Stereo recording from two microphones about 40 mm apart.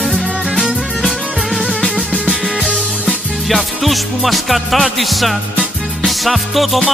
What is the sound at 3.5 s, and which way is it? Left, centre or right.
Music, centre.